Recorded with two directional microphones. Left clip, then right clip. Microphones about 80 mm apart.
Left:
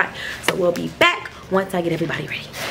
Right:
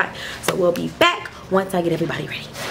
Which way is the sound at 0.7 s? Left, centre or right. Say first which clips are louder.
Even; centre.